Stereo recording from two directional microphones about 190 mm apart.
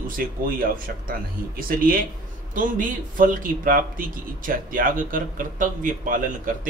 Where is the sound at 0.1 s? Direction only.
50° right (ahead or behind).